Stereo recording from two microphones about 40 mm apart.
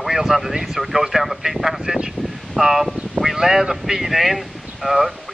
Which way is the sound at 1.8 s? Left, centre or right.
Centre.